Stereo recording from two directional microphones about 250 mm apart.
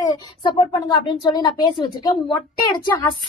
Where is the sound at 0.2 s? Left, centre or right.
Centre.